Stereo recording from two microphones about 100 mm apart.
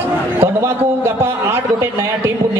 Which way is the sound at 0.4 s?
25° right (ahead or behind).